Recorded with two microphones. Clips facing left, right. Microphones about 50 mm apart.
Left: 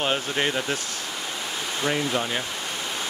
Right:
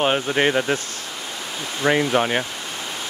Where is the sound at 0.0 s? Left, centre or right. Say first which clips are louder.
Right 6 dB; right.